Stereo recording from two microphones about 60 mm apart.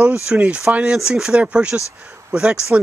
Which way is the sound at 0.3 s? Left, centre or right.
Centre.